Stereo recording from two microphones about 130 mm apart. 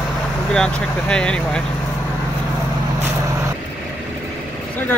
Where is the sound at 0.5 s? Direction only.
5° left (ahead or behind).